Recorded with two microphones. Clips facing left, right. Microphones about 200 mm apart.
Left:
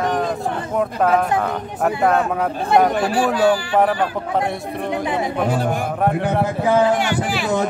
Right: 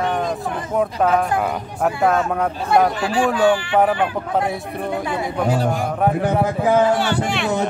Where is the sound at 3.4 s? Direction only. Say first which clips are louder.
Even; 40° left (ahead or behind).